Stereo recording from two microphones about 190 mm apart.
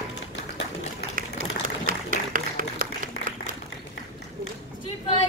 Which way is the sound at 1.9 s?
45° right (ahead or behind).